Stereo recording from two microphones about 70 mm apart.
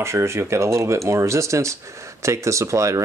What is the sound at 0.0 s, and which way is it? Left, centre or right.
Speech, right.